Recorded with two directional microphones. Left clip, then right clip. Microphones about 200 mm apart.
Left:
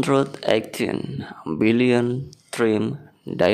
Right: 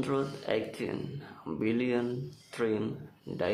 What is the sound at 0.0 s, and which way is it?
Speech, 45° left (ahead or behind).